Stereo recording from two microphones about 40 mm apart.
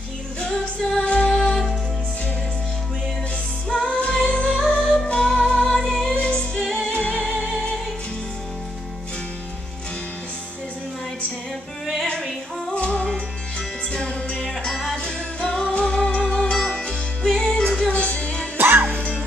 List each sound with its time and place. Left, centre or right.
0.4 s music: centre
1.0 s music: left
1.3 s music: centre
3.6 s music: left
6.1 s music: left
6.6 s music: centre
6.9 s music: left
11.8 s music: centre
12.7 s music: left
14.4 s music: centre
15.0 s music: left
17.9 s music: left
18.6 s music: right